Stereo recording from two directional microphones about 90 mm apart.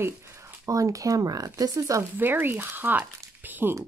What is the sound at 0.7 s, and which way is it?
Speech, 40° right (ahead or behind).